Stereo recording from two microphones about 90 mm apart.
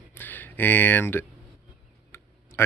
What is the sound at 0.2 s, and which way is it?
Speech, 20° left (ahead or behind).